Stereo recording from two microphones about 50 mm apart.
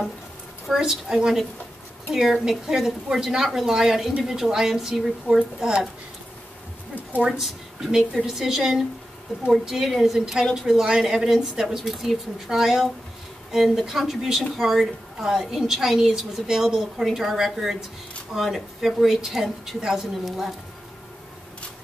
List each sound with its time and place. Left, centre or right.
0.7 s a woman's voice: centre
7.2 s a woman's voice: centre